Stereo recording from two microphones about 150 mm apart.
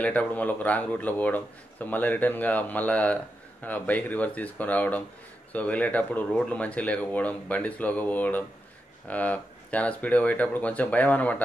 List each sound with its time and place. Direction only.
0.0 s speech: 10° left (ahead or behind)